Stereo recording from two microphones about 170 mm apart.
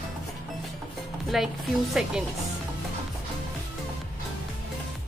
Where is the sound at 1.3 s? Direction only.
Centre (ahead or behind).